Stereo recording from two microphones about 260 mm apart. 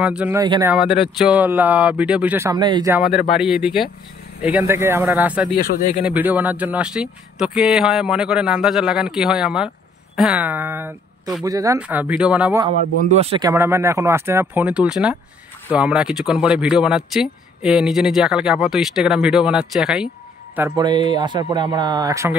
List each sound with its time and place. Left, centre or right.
0.0 s speech: centre
3.3 s speech: centre
12.6 s speech: right; by 20.1 s centre
20.5 s speech: centre